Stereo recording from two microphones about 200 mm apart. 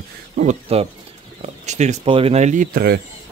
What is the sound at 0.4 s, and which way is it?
Speech, 35° right (ahead or behind).